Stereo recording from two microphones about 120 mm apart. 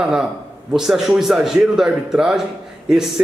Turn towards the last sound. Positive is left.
turn(degrees=-5)  # may be behind; listen again after turning